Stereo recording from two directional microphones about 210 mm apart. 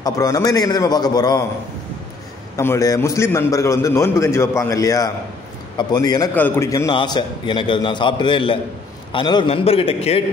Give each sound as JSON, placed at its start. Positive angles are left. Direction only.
{"t": 0.0, "sound": "a man's voice", "side_deg": 15}
{"t": 2.5, "sound": "a man's voice", "side_deg": 15}